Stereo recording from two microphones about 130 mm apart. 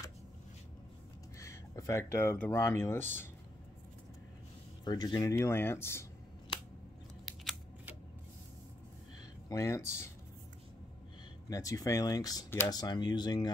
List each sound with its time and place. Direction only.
1.4 s speech: 25° left (ahead or behind)
4.8 s speech: 30° left (ahead or behind)
9.5 s speech: 20° left (ahead or behind)
11.4 s speech: 25° left (ahead or behind)